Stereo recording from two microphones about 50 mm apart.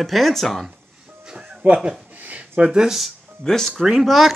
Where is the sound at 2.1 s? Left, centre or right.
Right.